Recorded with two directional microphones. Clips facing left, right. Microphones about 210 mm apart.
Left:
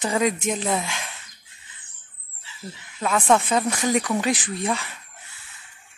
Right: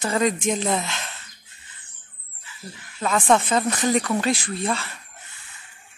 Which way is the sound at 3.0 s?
5° left (ahead or behind).